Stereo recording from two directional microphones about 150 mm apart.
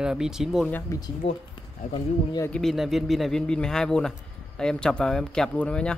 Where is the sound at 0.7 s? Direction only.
20° left (ahead or behind).